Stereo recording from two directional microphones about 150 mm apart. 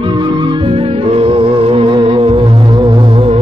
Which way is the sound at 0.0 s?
30° right (ahead or behind).